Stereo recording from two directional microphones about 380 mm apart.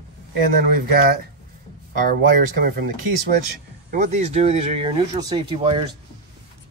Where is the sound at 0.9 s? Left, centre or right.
Right.